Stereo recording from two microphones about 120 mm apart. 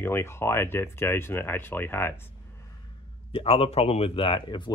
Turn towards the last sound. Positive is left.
turn(degrees=40)  # may be behind; listen again after turning